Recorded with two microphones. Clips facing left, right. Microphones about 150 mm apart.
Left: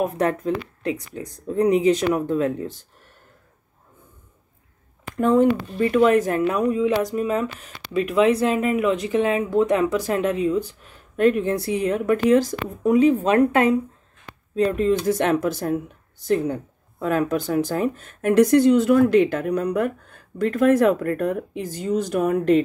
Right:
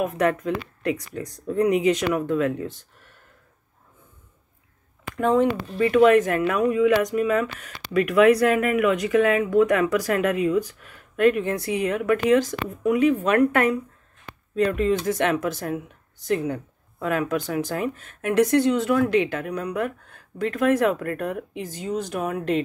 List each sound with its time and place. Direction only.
0.0 s speech: 35° left (ahead or behind)
5.1 s speech: 40° left (ahead or behind)